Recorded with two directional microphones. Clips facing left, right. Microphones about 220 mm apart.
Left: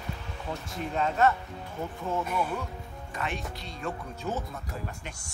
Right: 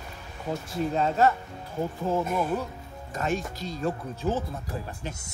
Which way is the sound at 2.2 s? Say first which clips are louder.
Right 4 dB; 45° right (ahead or behind).